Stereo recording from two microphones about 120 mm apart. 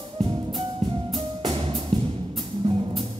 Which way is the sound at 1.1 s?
45° right (ahead or behind).